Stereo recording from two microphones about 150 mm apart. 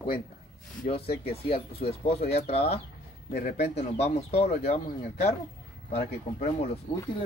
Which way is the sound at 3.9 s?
45° left (ahead or behind).